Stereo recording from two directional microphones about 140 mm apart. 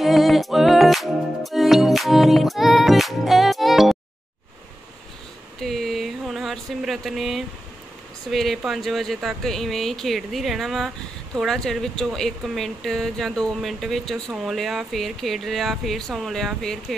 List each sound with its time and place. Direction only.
0.0 s music: centre (ahead or behind)
5.6 s a sound: centre (ahead or behind)
8.3 s speech: centre (ahead or behind)